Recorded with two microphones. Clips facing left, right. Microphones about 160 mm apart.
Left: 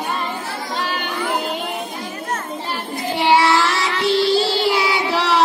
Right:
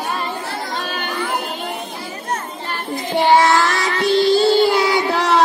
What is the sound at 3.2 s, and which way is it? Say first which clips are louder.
Child singing: right 2 dB; 40° right (ahead or behind).